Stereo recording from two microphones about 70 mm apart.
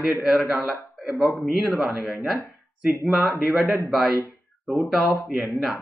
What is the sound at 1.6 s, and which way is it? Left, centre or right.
Speech, centre.